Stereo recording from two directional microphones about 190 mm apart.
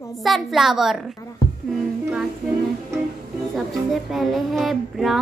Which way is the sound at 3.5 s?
Centre (ahead or behind).